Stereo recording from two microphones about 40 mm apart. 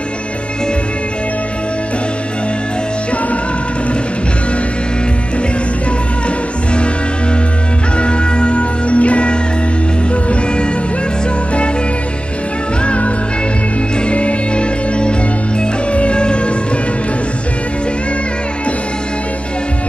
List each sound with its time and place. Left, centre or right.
8.0 s music: left
12.8 s music: left